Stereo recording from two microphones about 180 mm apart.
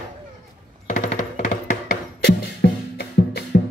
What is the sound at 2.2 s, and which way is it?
Music, 65° left (ahead or behind).